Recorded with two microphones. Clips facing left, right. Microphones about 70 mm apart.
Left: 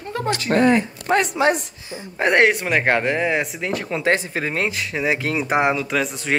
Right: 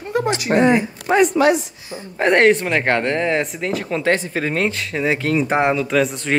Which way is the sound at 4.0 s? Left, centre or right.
Centre.